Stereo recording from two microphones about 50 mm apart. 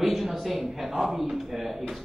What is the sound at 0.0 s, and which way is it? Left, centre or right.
Speech, centre.